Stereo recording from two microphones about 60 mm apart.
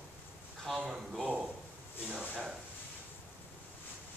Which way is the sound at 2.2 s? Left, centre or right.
Right.